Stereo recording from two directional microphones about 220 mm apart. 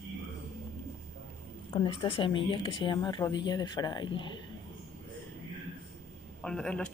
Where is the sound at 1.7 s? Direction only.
20° left (ahead or behind).